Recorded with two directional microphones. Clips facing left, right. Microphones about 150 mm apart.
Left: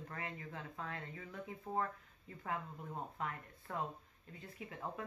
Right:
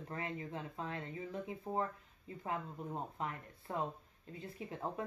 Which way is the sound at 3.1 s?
25° right (ahead or behind).